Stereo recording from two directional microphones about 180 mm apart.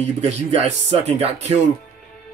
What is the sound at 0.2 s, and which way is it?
Speech, 40° right (ahead or behind).